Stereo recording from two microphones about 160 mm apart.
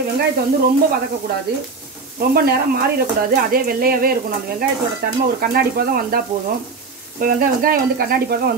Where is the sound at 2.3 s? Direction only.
75° right (ahead or behind).